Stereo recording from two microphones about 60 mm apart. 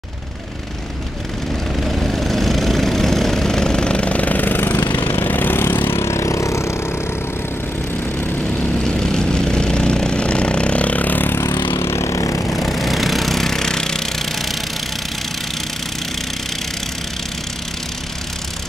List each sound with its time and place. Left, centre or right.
1.8 s vehicle: centre; by 6.8 s left
8.8 s vehicle: centre; by 11.3 s left
11.3 s vehicle: left
12.5 s vehicle: centre